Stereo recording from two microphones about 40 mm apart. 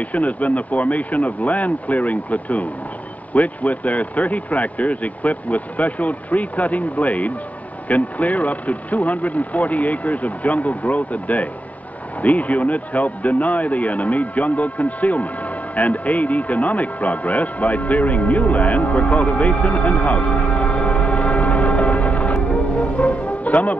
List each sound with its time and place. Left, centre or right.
0.0 s speech: left